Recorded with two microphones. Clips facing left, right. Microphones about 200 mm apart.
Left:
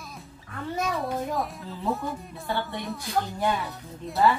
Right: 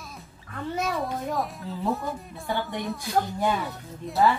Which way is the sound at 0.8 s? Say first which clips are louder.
Left 1 dB; centre (ahead or behind).